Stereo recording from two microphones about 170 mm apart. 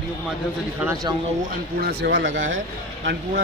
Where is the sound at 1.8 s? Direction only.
85° right.